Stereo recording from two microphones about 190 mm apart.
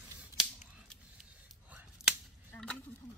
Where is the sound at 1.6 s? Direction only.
5° right (ahead or behind).